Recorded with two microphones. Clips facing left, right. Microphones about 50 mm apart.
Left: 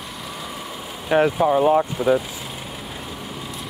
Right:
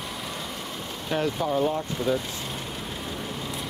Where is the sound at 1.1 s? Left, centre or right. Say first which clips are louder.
Left 9 dB; left.